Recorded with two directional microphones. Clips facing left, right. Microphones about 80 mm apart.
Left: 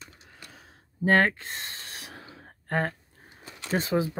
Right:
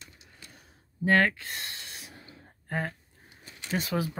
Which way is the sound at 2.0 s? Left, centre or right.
Left.